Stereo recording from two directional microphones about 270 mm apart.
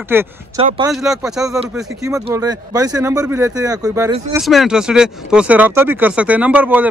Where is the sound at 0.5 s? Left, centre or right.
Centre.